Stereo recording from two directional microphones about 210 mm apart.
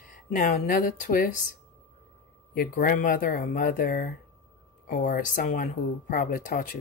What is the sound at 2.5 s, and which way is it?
Speech, 45° left (ahead or behind).